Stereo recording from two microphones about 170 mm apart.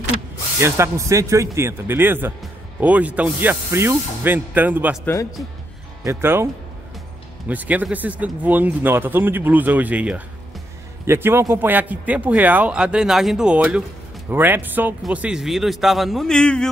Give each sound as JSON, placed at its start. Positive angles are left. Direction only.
{"t": 0.6, "sound": "speech", "side_deg": -15}
{"t": 6.0, "sound": "speech", "side_deg": -15}